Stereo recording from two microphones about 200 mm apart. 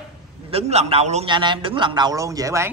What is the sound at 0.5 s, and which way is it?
Speech, 30° right (ahead or behind).